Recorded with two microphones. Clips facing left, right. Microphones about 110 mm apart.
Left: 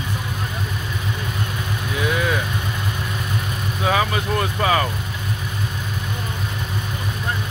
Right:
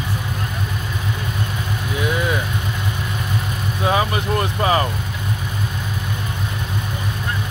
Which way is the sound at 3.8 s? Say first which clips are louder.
Right 1 dB; 20° right (ahead or behind).